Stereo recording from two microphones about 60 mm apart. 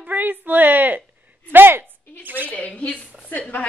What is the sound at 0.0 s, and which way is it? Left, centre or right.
A woman's voice, right.